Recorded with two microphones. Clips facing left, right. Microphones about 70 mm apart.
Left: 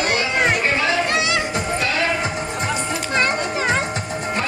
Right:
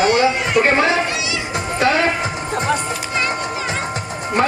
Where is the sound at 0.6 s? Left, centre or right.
Right.